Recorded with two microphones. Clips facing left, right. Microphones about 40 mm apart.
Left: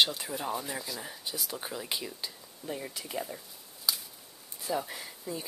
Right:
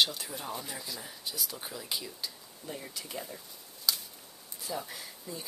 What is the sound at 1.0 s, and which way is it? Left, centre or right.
Speech, centre.